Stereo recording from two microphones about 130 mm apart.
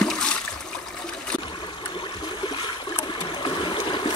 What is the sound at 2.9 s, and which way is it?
Stream, 40° left (ahead or behind).